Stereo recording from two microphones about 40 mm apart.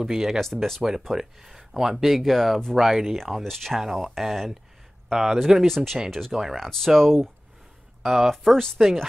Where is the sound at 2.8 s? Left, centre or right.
Centre.